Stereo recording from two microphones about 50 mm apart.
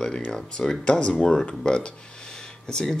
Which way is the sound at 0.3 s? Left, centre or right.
Centre.